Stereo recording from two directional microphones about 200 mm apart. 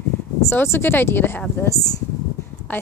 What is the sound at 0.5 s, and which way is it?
Speech, 10° left (ahead or behind).